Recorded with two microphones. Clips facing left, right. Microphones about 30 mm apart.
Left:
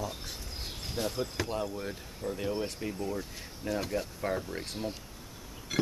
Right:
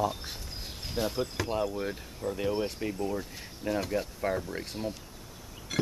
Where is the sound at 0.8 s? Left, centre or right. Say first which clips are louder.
Right 3 dB; centre.